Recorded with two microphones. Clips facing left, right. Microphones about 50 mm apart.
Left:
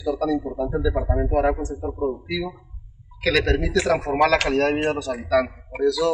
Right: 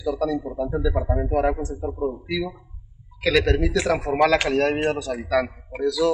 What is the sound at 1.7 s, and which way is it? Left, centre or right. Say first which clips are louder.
A man's voice: left 1 dB; centre.